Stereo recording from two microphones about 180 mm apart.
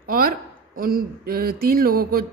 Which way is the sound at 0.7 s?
55° right (ahead or behind).